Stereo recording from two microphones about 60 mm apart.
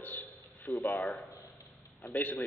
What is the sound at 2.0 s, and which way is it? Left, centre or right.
Speech, left.